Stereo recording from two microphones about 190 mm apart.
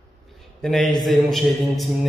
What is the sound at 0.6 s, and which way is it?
A man's voice, 5° left (ahead or behind).